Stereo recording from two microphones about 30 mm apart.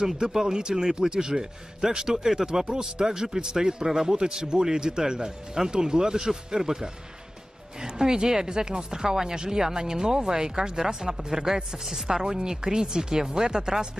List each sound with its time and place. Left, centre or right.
0.0 s speech: right